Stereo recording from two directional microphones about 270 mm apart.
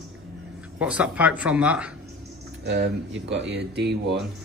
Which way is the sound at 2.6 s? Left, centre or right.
Right.